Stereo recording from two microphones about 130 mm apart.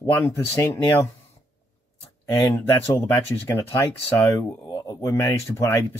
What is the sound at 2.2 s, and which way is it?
Speech, 25° left (ahead or behind).